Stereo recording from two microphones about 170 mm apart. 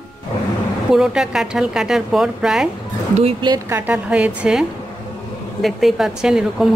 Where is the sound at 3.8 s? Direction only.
10° right (ahead or behind).